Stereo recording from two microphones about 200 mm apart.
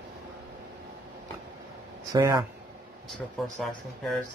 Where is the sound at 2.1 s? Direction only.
15° right (ahead or behind).